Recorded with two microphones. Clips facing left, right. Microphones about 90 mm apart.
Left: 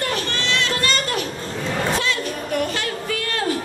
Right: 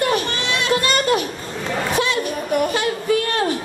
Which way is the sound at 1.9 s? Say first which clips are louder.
Right 3 dB; 20° right (ahead or behind).